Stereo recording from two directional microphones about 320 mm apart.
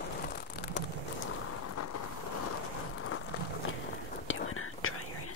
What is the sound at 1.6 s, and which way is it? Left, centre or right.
Vehicle, left.